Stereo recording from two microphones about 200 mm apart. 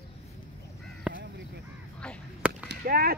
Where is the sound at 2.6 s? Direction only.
50° right (ahead or behind).